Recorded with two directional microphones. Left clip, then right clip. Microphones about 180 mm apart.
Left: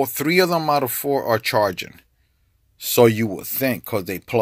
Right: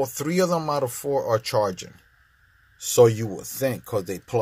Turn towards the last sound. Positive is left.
turn(degrees=20)  # may be behind; listen again after turning